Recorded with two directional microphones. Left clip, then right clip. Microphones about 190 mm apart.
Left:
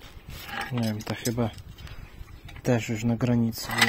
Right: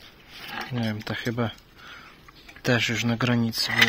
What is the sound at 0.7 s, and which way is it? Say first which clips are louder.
Speech: right 1 dB; 15° left (ahead or behind).